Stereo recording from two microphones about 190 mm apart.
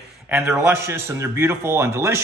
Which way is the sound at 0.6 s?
15° right (ahead or behind).